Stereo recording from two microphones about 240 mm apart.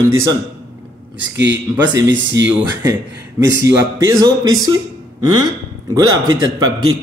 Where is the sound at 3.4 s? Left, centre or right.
Right.